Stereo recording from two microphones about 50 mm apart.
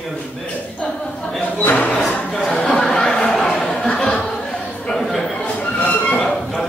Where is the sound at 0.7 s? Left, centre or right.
Centre.